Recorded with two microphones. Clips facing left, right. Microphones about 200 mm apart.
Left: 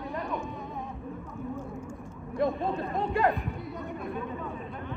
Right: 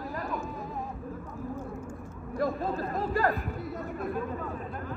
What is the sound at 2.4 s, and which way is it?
Chatter, centre (ahead or behind).